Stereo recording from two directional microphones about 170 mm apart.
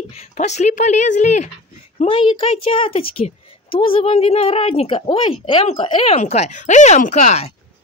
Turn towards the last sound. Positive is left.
turn(degrees=40)  # may be behind; listen again after turning